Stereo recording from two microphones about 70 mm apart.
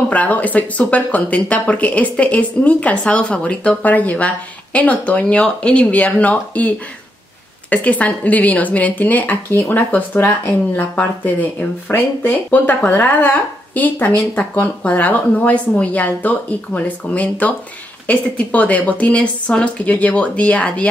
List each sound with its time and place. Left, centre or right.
0.1 s speech: left
7.7 s speech: left